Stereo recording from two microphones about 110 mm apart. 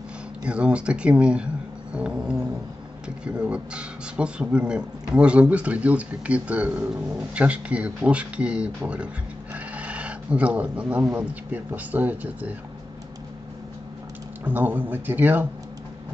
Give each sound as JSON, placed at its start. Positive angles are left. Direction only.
{"t": 0.5, "sound": "speech", "side_deg": -10}
{"t": 14.4, "sound": "speech", "side_deg": -15}